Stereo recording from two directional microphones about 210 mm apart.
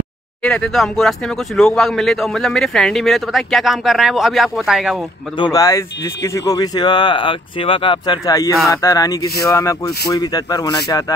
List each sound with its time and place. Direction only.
0.4 s speech: 5° left (ahead or behind)
5.4 s speech: 15° left (ahead or behind)